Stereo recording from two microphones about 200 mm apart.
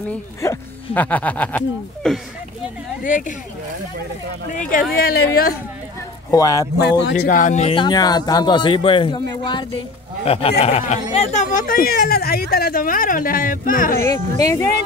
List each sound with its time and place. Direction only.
0.4 s speech: 10° left (ahead or behind)
3.0 s speech: 40° left (ahead or behind)
4.6 s speech: 45° left (ahead or behind)
6.3 s speech: 15° left (ahead or behind)
6.8 s speech: 55° left (ahead or behind)
14.0 s speech: 15° left (ahead or behind)